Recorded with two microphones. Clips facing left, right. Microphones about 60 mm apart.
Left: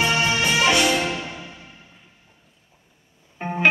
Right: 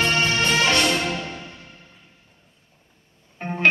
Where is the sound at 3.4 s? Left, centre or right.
Centre.